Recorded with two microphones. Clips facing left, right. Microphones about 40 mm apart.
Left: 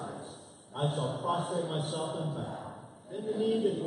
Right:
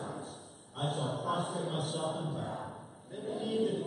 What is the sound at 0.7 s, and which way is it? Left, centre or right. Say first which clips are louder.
A man's voice: left 2 dB; centre.